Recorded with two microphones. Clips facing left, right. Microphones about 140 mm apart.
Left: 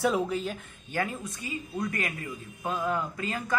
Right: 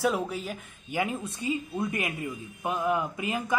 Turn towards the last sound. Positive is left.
turn(degrees=-15)  # may be behind; listen again after turning